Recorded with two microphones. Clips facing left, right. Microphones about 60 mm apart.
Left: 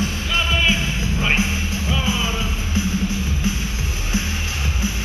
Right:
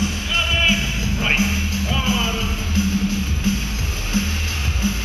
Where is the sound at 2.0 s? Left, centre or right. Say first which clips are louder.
Right 3 dB; left.